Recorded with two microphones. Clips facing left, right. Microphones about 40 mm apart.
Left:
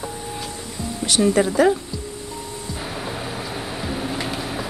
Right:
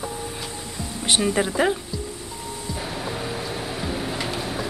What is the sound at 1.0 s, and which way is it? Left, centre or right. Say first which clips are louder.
Speech: left 3 dB; right.